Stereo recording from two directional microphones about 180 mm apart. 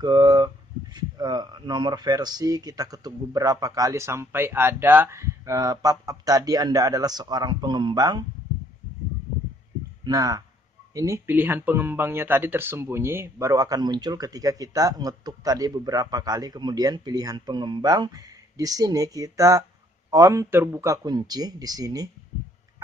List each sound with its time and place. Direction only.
0.0 s speech: 20° right (ahead or behind)
10.0 s speech: 20° right (ahead or behind)